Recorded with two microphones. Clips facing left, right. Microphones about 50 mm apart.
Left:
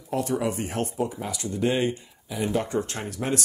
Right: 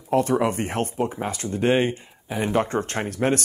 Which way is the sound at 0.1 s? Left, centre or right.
Right.